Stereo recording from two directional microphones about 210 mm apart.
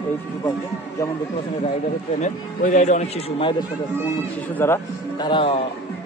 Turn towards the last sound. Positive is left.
turn(degrees=25)  # may be behind; listen again after turning